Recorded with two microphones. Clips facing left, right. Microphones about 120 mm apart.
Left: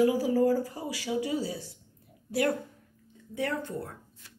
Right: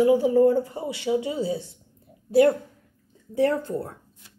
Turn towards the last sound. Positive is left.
turn(degrees=-30)  # may be behind; listen again after turning